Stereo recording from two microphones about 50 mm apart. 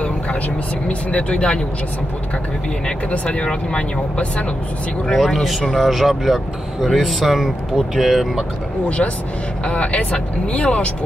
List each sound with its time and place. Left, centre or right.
0.8 s speech: left
3.1 s speech: left
5.0 s speech: centre
8.8 s speech: left